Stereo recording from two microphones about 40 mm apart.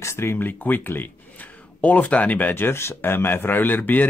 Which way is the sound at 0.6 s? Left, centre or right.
Left.